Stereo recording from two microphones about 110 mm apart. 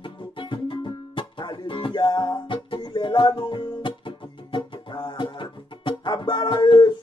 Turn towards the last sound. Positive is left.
turn(degrees=45)  # may be behind; listen again after turning